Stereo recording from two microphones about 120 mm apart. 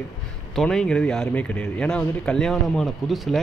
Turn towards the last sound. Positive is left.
turn(degrees=0)  # may be behind; listen again after turning